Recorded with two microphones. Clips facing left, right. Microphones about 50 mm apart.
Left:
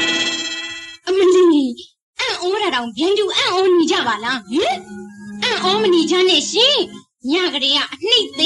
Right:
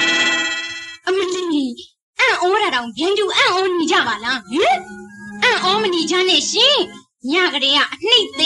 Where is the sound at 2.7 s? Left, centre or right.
Centre.